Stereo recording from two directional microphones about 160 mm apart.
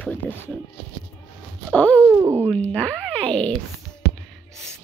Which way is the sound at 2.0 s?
15° right (ahead or behind).